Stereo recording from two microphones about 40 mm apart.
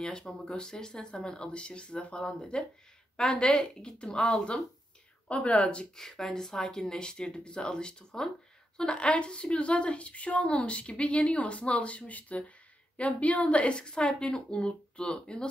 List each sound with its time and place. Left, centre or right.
0.0 s a woman's voice: centre
5.3 s speech: left
5.9 s a woman's voice: centre
8.9 s a woman's voice: left